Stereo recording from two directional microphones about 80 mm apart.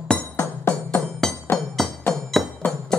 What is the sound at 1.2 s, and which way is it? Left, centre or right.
Music, centre.